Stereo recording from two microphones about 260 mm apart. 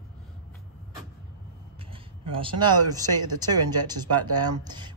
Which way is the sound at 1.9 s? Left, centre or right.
Centre.